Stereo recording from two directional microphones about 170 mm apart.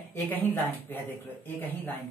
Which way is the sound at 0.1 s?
10° left (ahead or behind).